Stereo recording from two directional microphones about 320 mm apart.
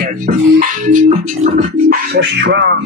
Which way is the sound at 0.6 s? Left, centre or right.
Right.